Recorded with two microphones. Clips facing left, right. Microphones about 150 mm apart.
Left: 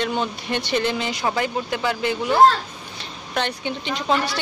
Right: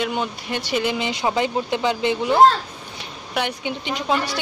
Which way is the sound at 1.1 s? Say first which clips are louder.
Right 2 dB; 20° right (ahead or behind).